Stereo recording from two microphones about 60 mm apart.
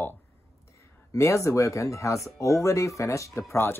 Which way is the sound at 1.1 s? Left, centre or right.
Left.